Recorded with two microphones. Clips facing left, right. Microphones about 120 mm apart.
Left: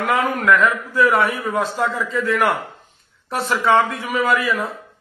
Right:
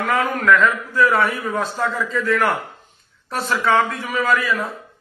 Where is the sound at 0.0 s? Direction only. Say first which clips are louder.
Left 1 dB; 20° left (ahead or behind).